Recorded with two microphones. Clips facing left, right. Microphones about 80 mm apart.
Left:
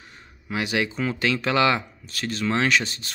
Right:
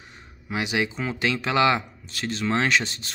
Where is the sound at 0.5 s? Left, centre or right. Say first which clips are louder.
Left 1 dB; centre.